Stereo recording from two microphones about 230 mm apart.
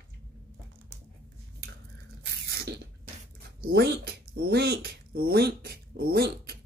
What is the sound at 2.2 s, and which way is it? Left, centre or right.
Spray, right.